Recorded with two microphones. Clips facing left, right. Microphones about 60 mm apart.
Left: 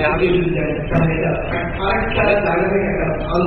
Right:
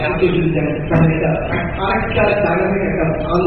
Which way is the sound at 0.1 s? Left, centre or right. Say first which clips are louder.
Even; left.